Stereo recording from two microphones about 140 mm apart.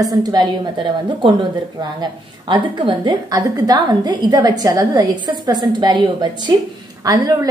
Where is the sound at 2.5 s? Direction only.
35° right (ahead or behind).